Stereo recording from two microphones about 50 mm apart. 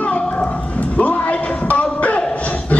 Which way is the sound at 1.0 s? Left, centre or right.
Left.